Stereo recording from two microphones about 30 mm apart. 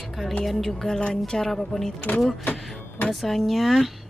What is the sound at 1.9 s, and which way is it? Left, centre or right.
Speech, left.